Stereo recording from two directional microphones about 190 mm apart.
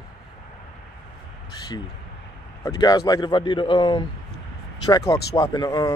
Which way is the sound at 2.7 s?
20° left (ahead or behind).